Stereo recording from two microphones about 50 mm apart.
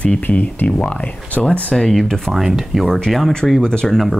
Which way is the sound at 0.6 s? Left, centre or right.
Left.